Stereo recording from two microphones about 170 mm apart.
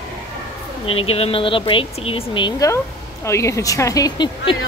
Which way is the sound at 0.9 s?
35° left (ahead or behind).